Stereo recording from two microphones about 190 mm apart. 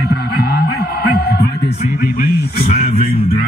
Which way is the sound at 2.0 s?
50° left (ahead or behind).